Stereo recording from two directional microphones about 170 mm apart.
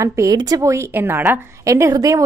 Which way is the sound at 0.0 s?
20° right (ahead or behind).